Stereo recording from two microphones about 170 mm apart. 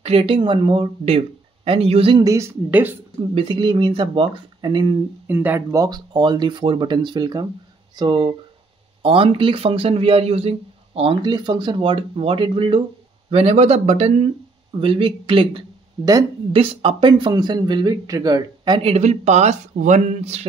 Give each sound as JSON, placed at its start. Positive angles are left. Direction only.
{"t": 0.0, "sound": "speech", "side_deg": -35}
{"t": 2.2, "sound": "a woman's voice", "side_deg": -15}
{"t": 3.3, "sound": "speech", "side_deg": -30}
{"t": 5.3, "sound": "speech", "side_deg": -10}